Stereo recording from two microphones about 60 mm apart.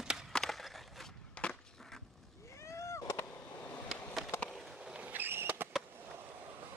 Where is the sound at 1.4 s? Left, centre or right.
Centre.